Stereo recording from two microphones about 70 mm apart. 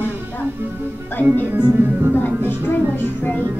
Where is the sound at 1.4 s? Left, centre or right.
Right.